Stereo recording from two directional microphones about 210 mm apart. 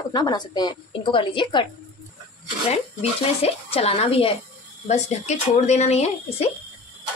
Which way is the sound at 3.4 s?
30° left (ahead or behind).